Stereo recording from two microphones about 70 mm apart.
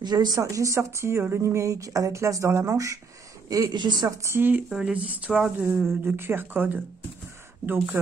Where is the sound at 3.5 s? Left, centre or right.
Right.